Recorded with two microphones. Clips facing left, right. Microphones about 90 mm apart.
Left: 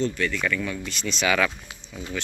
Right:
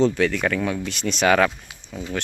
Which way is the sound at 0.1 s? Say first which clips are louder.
Right 5 dB; 80° right.